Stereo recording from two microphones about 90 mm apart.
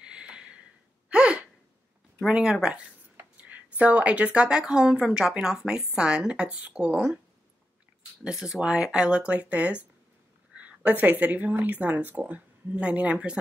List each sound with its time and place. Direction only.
0.0 s a sound: 10° right (ahead or behind)
1.1 s gasp: 10° right (ahead or behind)
2.2 s speech: 5° right (ahead or behind)
8.2 s speech: 10° right (ahead or behind)